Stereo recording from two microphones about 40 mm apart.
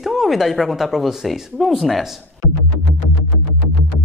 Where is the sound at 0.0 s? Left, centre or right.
Centre.